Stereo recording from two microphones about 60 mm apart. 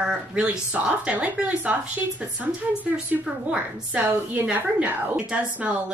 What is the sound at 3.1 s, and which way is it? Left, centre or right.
A woman's voice, right.